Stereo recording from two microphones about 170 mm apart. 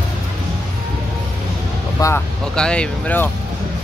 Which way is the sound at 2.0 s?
15° left (ahead or behind).